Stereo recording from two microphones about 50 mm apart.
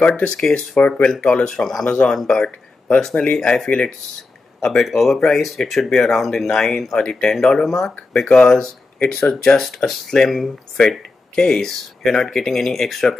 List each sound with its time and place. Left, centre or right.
0.0 s speech: centre
1.5 s speech: centre
1.9 s speech: centre